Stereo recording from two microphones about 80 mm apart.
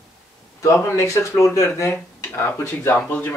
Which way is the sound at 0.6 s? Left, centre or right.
Left.